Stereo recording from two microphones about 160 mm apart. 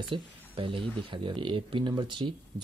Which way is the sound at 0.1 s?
30° right (ahead or behind).